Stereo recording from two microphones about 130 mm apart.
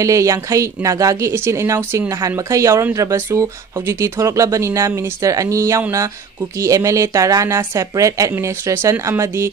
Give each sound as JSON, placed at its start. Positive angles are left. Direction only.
{"t": 0.0, "sound": "speech", "side_deg": -25}